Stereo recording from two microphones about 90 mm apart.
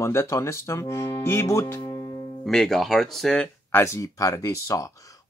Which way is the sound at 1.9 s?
45° left (ahead or behind).